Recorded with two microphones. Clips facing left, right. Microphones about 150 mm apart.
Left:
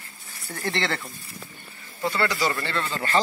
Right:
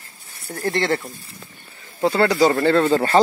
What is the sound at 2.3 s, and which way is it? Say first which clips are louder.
Speech: right 11 dB; 50° right (ahead or behind).